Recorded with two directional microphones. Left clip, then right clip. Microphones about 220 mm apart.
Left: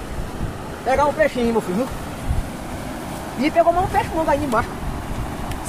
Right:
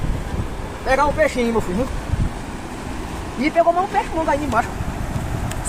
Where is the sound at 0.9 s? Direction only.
25° right (ahead or behind).